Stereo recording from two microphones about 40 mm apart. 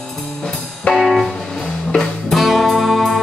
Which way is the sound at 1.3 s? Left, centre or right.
Centre.